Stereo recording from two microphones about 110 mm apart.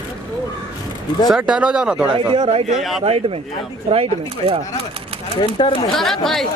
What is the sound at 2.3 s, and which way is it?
A man's voice, 65° right (ahead or behind).